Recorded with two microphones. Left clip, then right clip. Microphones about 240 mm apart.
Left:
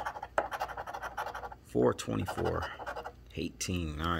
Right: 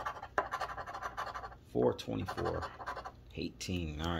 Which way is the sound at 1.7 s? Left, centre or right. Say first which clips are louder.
Left 3 dB; left.